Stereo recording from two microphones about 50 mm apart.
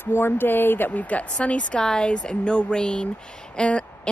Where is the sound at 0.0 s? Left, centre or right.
Left.